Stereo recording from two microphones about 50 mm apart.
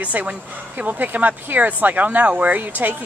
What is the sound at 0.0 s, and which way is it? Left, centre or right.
Speech, right.